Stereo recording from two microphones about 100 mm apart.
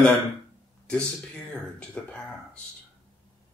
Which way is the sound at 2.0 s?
5° left (ahead or behind).